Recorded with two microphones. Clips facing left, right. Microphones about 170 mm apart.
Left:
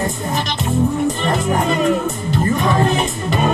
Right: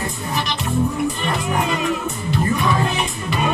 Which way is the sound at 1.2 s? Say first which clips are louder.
Left 4 dB; 40° left (ahead or behind).